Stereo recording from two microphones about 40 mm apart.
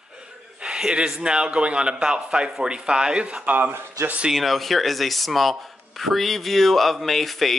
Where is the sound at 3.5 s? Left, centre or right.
Right.